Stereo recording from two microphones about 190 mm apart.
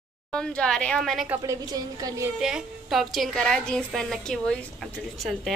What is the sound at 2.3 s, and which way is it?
Speech, centre (ahead or behind).